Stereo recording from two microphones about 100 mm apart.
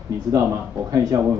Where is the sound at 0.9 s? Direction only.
40° right (ahead or behind).